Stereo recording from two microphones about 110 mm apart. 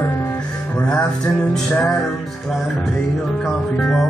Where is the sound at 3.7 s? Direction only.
10° left (ahead or behind).